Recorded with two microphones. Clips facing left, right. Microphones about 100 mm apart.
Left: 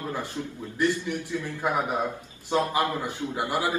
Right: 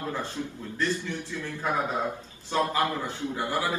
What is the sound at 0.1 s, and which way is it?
A man's voice, 15° left (ahead or behind).